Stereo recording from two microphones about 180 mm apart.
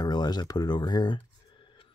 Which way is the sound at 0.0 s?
20° left (ahead or behind).